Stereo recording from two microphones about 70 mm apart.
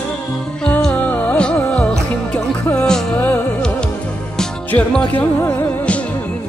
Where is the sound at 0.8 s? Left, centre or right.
Centre.